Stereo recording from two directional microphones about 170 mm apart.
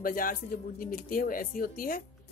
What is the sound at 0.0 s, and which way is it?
A woman's voice, 55° left (ahead or behind).